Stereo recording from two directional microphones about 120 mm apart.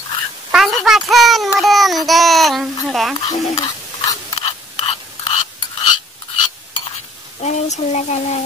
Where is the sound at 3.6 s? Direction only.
35° left (ahead or behind).